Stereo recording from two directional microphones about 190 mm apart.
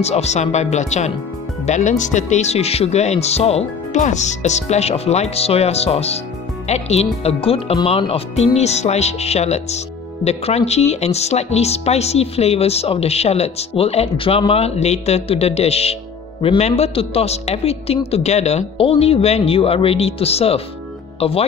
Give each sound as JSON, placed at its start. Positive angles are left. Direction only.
{"t": 0.0, "sound": "speech", "side_deg": 35}